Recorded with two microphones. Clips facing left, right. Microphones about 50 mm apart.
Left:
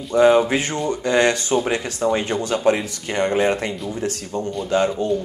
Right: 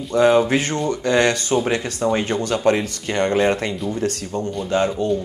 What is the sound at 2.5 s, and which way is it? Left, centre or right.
Speech, centre.